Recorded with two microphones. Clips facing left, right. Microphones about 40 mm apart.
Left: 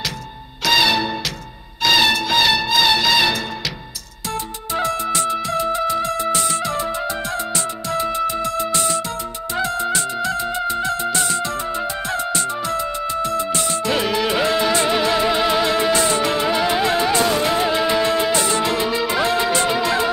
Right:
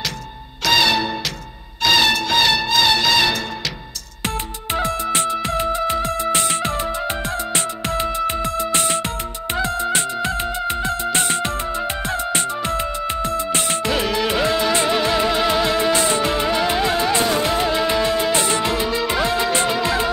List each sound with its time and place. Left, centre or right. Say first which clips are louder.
0.7 s music: even; centre
6.3 s music: even; right
8.3 s music: even; right
13.9 s music: left 1 dB; centre
15.9 s music: even; right
16.3 s music: left 1 dB; centre
18.3 s music: even; right
18.7 s music: left 1 dB; centre